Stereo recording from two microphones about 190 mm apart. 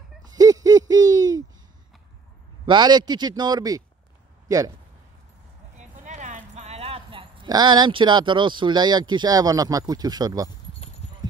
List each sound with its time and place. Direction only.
0.2 s a sound: 20° right (ahead or behind)
2.6 s a man's voice: 25° right (ahead or behind)
5.8 s speech: 40° right (ahead or behind); by 10.5 s 20° right (ahead or behind)